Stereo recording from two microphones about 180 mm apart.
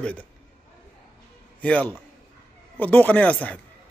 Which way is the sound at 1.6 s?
5° left (ahead or behind).